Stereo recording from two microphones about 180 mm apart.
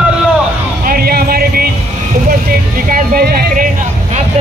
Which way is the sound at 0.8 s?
55° right (ahead or behind).